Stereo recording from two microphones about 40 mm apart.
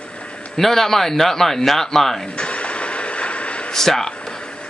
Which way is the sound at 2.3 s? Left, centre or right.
Left.